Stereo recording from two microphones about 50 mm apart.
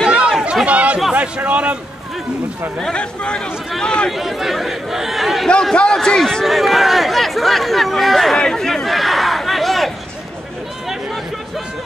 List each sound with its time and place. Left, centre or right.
0.0 s chatter: centre
1.1 s a man's voice: right
2.8 s speech: centre
4.1 s speech: centre
5.5 s a man's voice: centre
6.4 s speech: centre
8.4 s a sound: centre